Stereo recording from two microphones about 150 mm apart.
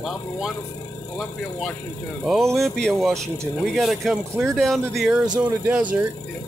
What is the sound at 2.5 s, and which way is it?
Speech, centre (ahead or behind).